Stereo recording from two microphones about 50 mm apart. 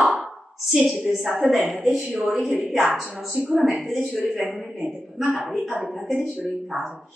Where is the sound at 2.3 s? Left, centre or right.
Centre.